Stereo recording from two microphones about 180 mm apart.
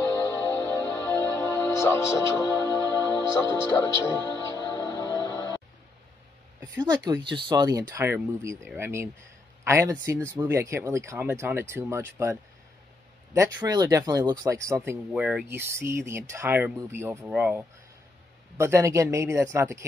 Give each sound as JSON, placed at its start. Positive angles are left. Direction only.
{"t": 0.0, "sound": "music", "side_deg": 25}
{"t": 6.6, "sound": "speech", "side_deg": -20}